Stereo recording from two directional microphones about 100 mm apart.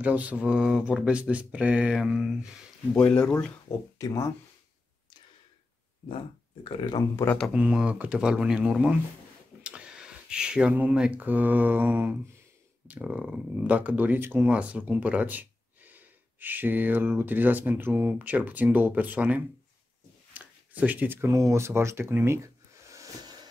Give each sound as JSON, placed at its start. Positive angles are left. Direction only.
{"t": 0.0, "sound": "speech", "side_deg": -15}
{"t": 2.9, "sound": "speech", "side_deg": 10}
{"t": 4.0, "sound": "speech", "side_deg": 35}
{"t": 7.5, "sound": "speech", "side_deg": -10}
{"t": 20.3, "sound": "a sound", "side_deg": -15}
{"t": 21.3, "sound": "speech", "side_deg": -30}